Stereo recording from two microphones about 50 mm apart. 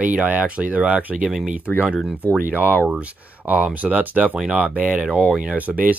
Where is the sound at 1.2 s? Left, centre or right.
Centre.